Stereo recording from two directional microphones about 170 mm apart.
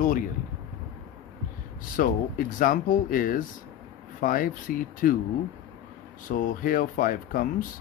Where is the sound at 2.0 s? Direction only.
55° left (ahead or behind).